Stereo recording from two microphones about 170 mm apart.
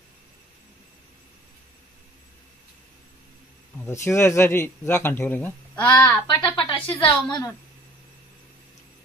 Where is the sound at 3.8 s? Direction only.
15° left (ahead or behind).